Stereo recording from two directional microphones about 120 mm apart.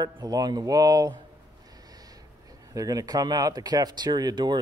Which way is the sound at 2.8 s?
30° right (ahead or behind).